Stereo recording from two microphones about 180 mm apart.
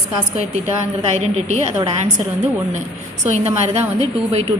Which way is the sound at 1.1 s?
40° right (ahead or behind).